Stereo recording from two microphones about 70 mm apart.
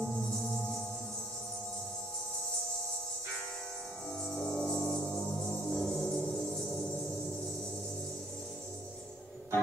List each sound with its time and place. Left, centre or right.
0.0 s music: centre
4.3 s music: centre
5.7 s music: centre